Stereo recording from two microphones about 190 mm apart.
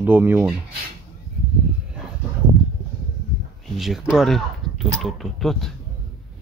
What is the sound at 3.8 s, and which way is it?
Speech, centre (ahead or behind).